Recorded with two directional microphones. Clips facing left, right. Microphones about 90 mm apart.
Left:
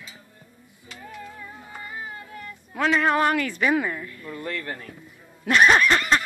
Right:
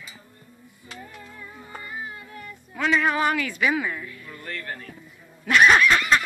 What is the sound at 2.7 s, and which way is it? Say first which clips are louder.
Speech: left 1 dB; 45° left (ahead or behind).